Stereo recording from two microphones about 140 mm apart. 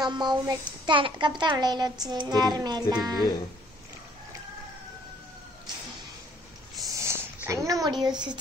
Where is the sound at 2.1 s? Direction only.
30° right (ahead or behind).